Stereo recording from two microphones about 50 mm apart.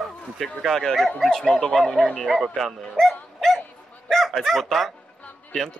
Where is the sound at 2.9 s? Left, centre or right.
Centre.